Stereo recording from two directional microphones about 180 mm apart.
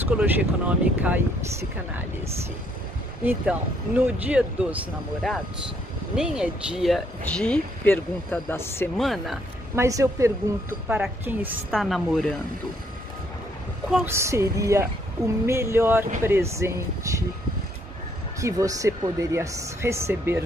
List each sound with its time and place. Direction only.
0.2 s speech: 10° right (ahead or behind)
3.3 s speech: 10° right (ahead or behind); by 8.9 s 10° left (ahead or behind)
8.9 s speech: centre (ahead or behind)
9.8 s speech: 15° right (ahead or behind); by 12.4 s centre (ahead or behind)
14.0 s speech: 15° right (ahead or behind)
18.4 s speech: 20° right (ahead or behind)